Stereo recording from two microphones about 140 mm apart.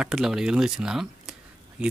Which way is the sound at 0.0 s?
5° right (ahead or behind).